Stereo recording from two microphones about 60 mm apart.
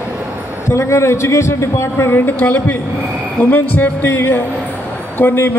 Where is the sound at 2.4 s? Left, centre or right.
Left.